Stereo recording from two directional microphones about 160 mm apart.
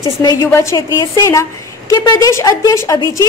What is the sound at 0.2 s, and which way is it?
A woman's voice, 20° left (ahead or behind).